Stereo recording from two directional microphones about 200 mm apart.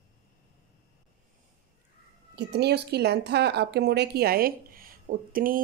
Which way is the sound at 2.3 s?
55° right (ahead or behind).